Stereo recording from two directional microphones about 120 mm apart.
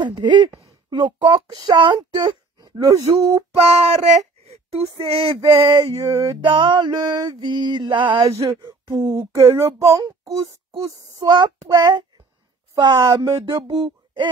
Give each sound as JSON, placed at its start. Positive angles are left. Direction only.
{"t": 0.0, "sound": "speech", "side_deg": -40}
{"t": 3.6, "sound": "speech", "side_deg": -65}
{"t": 5.0, "sound": "male singing", "side_deg": -55}
{"t": 5.4, "sound": "speech", "side_deg": -35}
{"t": 8.3, "sound": "speech", "side_deg": -25}
{"t": 8.5, "sound": "a sound", "side_deg": -40}
{"t": 9.3, "sound": "speech", "side_deg": -20}
{"t": 13.0, "sound": "speech", "side_deg": -25}